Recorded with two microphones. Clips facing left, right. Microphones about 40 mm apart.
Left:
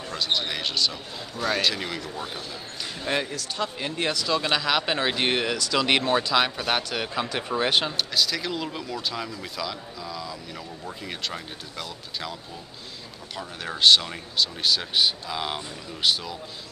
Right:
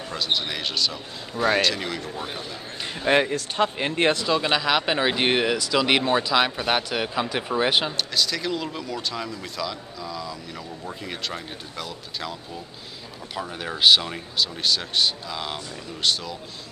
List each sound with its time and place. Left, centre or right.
0.1 s speech: centre
1.3 s a man's voice: centre
1.6 s speech: centre
2.1 s speech: centre
2.8 s speech: right
4.3 s speech: centre
13.4 s speech: centre